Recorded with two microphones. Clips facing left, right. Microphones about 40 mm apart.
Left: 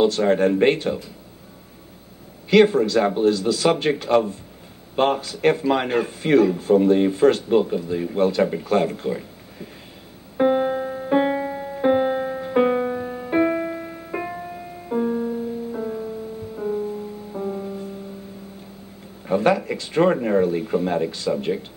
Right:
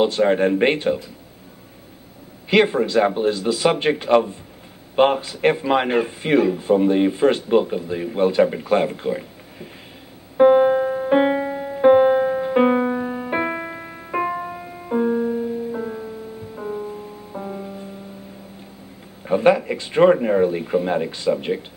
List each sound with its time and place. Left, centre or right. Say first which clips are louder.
0.0 s a man's voice: right 1 dB; centre
2.5 s a man's voice: left 1 dB; centre
10.3 s music: right 6 dB; centre
19.2 s speech: right 3 dB; centre